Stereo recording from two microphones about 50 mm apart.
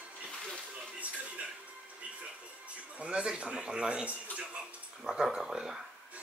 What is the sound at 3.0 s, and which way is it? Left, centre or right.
A man's voice, right.